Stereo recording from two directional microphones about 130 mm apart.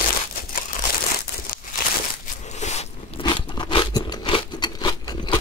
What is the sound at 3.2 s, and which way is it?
Crunch, 40° left (ahead or behind).